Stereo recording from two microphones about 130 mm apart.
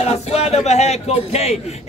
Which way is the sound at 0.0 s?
55° left (ahead or behind).